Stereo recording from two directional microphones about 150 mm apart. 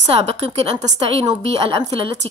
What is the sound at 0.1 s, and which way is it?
A woman's voice, 45° right (ahead or behind).